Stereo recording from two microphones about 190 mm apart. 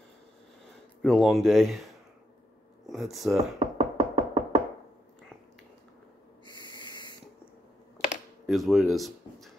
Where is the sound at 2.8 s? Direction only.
Centre (ahead or behind).